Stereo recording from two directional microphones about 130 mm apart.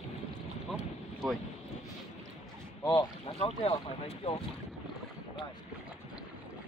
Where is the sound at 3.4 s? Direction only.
45° left (ahead or behind).